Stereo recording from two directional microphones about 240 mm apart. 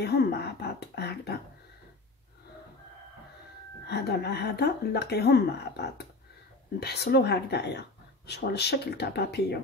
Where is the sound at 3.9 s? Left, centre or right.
Left.